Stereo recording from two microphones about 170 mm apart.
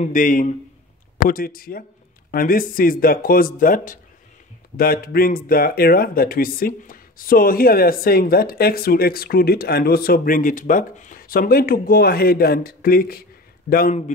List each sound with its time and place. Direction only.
0.0 s a man's voice: 50° left (ahead or behind)